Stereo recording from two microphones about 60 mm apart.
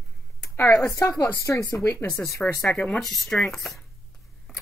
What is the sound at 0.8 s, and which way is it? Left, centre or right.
Speech, left.